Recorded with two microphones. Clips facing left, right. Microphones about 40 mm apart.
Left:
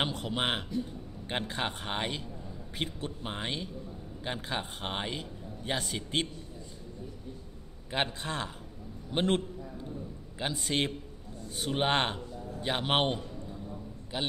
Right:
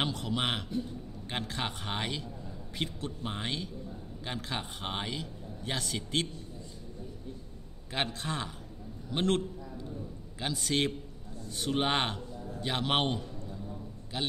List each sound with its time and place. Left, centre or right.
0.0 s a man's voice: left
5.1 s a man's voice: left
7.9 s a man's voice: centre
8.3 s a man's voice: centre
9.1 s a man's voice: centre
11.5 s a man's voice: centre
12.6 s a man's voice: centre